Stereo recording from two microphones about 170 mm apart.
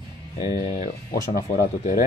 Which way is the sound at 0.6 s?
40° left (ahead or behind).